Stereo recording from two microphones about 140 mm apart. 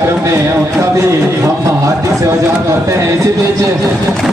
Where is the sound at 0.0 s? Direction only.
20° right (ahead or behind).